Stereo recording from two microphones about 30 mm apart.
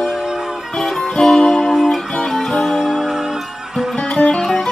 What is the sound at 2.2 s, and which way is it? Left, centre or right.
Guitar, centre.